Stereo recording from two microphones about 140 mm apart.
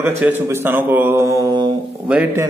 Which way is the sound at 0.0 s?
15° right (ahead or behind).